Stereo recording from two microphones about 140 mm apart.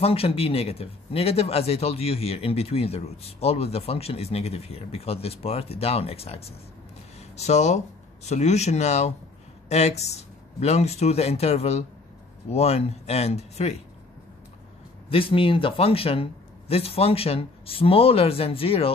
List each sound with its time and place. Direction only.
0.0 s speech: 45° left (ahead or behind)
15.0 s speech: 40° left (ahead or behind)